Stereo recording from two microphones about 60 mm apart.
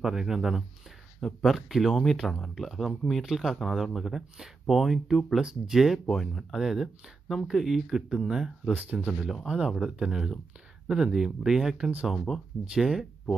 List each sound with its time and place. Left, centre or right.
0.0 s speech: centre
6.0 s speech: centre
8.8 s speech: right
9.2 s speech: centre